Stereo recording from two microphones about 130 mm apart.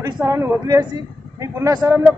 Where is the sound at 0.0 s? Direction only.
20° right (ahead or behind).